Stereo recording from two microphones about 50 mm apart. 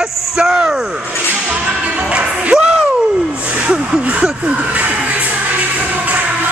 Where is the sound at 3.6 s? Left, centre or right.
Right.